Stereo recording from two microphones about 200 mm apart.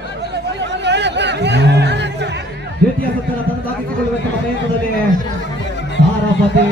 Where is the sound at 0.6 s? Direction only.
60° right (ahead or behind).